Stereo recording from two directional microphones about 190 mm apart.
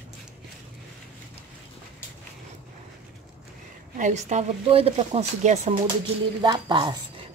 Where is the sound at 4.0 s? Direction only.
40° right (ahead or behind).